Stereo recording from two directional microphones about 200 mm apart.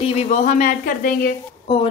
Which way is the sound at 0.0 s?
35° left (ahead or behind).